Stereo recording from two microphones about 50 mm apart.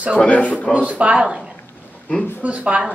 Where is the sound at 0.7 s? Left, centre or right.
Right.